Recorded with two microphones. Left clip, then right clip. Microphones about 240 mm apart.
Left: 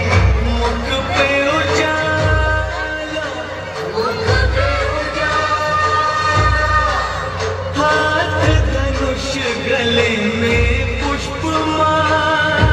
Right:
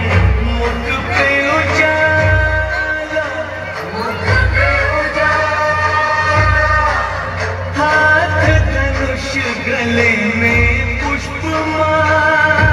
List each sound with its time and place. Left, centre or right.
5.2 s music: left
7.8 s music: left